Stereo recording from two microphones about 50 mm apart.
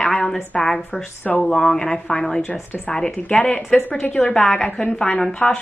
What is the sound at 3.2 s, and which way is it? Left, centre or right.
A woman's voice, left.